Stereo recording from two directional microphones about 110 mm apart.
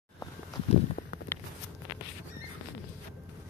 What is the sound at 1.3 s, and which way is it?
Walk, 20° left (ahead or behind).